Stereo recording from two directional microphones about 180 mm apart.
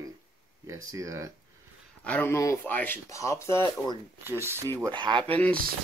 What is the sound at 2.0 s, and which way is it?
Speech, 10° left (ahead or behind).